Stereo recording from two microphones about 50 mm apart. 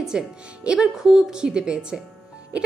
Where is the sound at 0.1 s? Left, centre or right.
Centre.